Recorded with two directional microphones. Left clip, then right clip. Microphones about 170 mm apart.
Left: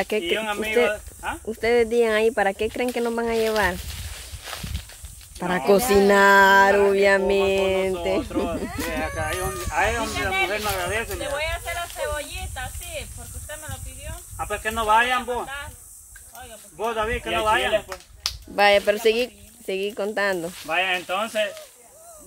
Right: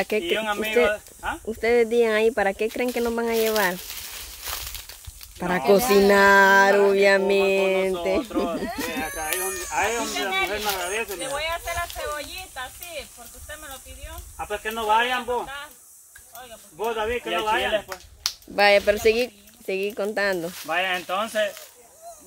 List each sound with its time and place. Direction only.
0.0 s speech: centre (ahead or behind)
4.1 s a sound: 60° right (ahead or behind)
5.4 s speech: centre (ahead or behind)
8.9 s speech: 60° left (ahead or behind)
11.3 s snake: centre (ahead or behind)
14.3 s speech: 60° left (ahead or behind)
16.7 s speech: 55° left (ahead or behind)
17.7 s speech: centre (ahead or behind)